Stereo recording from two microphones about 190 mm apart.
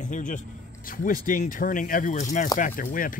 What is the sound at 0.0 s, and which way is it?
Speech, 40° left (ahead or behind).